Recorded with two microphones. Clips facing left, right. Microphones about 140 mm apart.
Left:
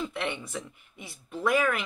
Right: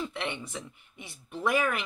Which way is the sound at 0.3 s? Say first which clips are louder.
Left 2 dB; 15° right (ahead or behind).